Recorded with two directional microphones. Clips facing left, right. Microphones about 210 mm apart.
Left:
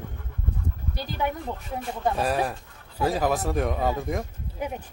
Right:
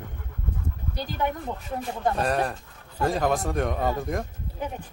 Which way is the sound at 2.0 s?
Centre (ahead or behind).